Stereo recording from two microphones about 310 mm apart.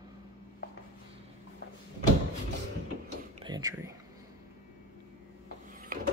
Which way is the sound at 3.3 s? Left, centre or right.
Centre.